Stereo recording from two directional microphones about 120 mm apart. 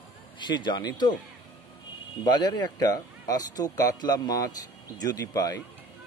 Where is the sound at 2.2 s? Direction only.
35° left (ahead or behind).